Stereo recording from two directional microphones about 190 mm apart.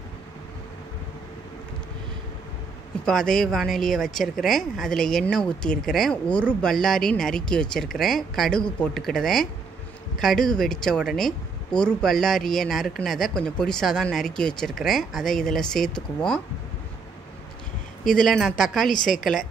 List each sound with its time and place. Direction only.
3.1 s speech: 5° left (ahead or behind)
18.0 s speech: centre (ahead or behind)
18.9 s a woman's voice: 45° left (ahead or behind)